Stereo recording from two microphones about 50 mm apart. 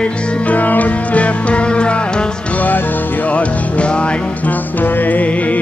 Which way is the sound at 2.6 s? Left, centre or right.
Left.